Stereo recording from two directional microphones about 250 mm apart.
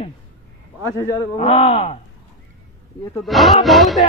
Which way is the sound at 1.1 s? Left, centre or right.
Left.